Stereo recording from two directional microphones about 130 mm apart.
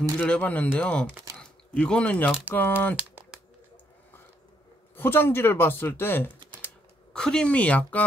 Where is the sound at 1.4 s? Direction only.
5° left (ahead or behind).